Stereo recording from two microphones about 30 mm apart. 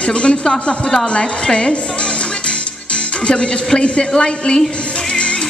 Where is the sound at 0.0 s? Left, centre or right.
Left.